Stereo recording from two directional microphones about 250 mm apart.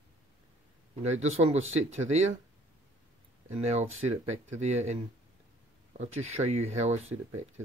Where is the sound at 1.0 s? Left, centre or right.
Right.